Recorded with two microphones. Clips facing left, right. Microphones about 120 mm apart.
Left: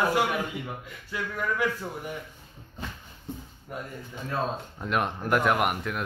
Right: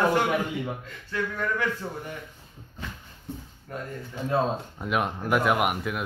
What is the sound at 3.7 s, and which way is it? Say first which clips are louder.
Speech: right 1 dB; 15° left (ahead or behind).